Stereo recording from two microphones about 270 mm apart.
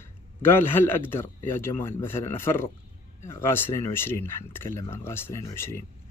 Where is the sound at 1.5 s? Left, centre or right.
Centre.